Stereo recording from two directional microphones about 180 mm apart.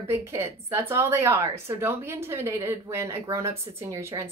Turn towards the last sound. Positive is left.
turn(degrees=-15)  # may be behind; listen again after turning